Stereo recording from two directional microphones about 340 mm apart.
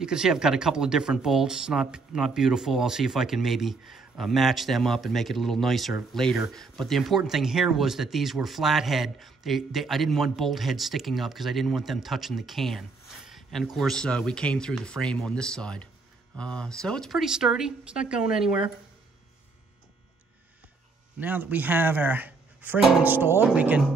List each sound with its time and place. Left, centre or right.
0.0 s speech: centre
21.2 s speech: centre